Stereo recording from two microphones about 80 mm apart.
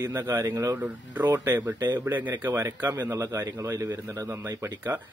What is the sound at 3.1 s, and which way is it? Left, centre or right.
A man's voice, right.